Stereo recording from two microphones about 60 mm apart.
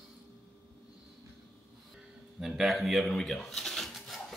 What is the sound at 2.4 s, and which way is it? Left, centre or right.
Speech, centre.